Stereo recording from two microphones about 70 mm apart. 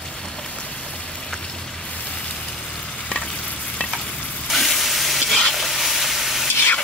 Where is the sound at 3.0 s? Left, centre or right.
Centre.